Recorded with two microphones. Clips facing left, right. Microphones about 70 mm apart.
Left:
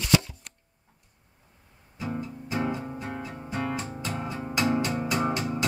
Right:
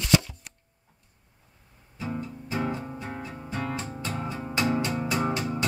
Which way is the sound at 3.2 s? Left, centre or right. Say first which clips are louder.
Left 1 dB; centre.